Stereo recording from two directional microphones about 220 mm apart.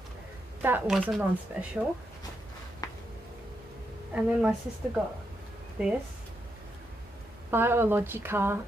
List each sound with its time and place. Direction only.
0.6 s speech: 10° right (ahead or behind)
2.8 s a sound: 15° left (ahead or behind)
4.1 s speech: 5° right (ahead or behind)
7.5 s speech: 10° right (ahead or behind)